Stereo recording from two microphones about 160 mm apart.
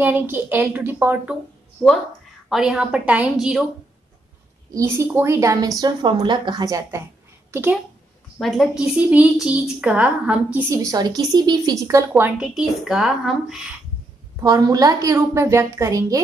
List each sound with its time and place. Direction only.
0.0 s a woman's voice: 15° right (ahead or behind)
2.5 s a woman's voice: 5° right (ahead or behind)
4.7 s a woman's voice: 15° right (ahead or behind)
8.4 s a woman's voice: centre (ahead or behind); by 12.1 s 20° right (ahead or behind)
12.1 s a woman's voice: 5° right (ahead or behind)
14.4 s a woman's voice: 20° right (ahead or behind)